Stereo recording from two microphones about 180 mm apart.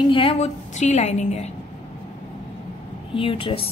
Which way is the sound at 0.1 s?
30° left (ahead or behind).